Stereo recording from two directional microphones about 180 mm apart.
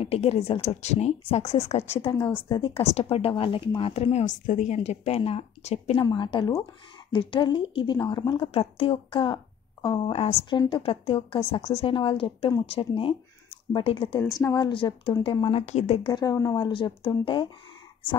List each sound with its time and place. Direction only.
0.0 s speech: 35° left (ahead or behind)
5.9 s a woman's voice: 25° left (ahead or behind)
16.1 s a woman's voice: 20° left (ahead or behind)